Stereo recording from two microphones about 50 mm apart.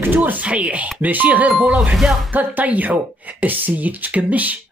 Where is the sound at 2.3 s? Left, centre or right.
Right.